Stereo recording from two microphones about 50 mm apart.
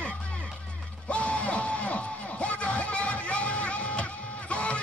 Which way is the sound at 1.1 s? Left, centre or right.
Left.